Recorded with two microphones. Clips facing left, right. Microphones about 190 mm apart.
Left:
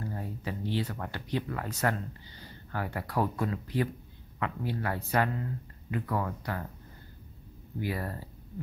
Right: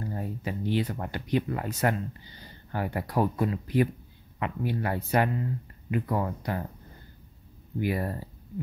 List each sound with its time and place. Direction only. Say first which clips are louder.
0.0 s speech: right 3 dB; 15° right (ahead or behind)
2.7 s speech: right 4 dB; 20° right (ahead or behind)
7.8 s speech: right 5 dB; 20° right (ahead or behind)